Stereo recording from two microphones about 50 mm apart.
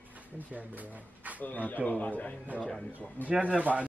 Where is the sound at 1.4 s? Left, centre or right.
Left.